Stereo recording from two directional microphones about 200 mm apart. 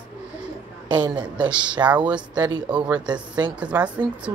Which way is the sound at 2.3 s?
20° right (ahead or behind).